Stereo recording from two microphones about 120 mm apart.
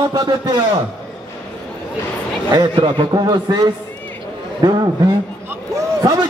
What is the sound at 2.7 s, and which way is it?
A man's voice, 45° right (ahead or behind).